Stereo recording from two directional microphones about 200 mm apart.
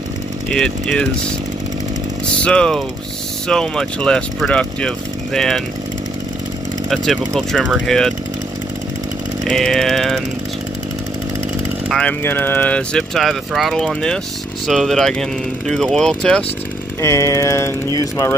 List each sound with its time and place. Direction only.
0.5 s speech: 5° left (ahead or behind)
2.4 s speech: 5° left (ahead or behind)
6.9 s speech: centre (ahead or behind)
9.4 s speech: centre (ahead or behind)
11.9 s speech: 5° left (ahead or behind)
17.0 s a sound: 15° left (ahead or behind)